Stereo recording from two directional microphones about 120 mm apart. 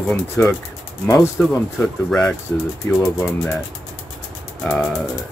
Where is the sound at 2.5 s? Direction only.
25° left (ahead or behind).